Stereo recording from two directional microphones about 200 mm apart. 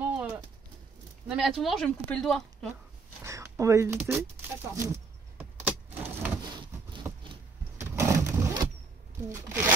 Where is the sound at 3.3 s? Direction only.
15° right (ahead or behind).